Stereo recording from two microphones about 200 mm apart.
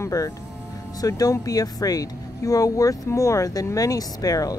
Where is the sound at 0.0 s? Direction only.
15° left (ahead or behind).